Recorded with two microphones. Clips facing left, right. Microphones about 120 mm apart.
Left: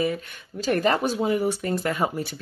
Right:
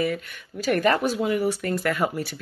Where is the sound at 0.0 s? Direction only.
25° left (ahead or behind).